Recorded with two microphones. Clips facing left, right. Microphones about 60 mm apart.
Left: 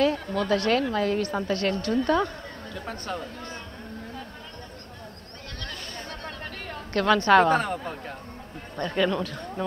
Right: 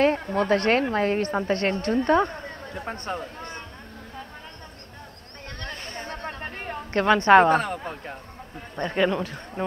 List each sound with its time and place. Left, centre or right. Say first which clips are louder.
0.0 s a woman's voice: right 3 dB; right
5.6 s chatter: right 3 dB; right
7.5 s speech: right 1 dB; centre
8.7 s speech: right 2 dB; right